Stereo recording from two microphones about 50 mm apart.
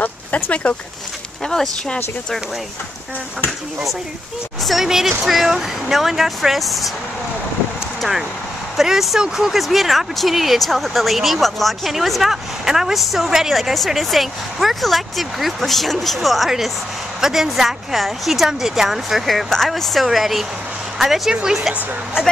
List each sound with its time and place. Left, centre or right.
0.0 s speech: left
4.6 s speech: centre
8.0 s speech: centre
21.3 s a woman's voice: centre